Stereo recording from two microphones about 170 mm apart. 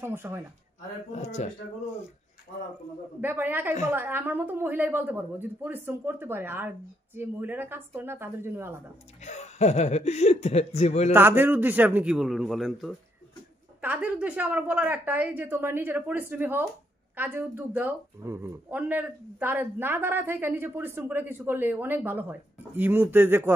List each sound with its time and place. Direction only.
0.0 s speech: 15° right (ahead or behind)
1.1 s speech: 40° left (ahead or behind)
3.2 s speech: 10° right (ahead or behind)
9.2 s speech: 45° left (ahead or behind)
11.1 s speech: 10° right (ahead or behind)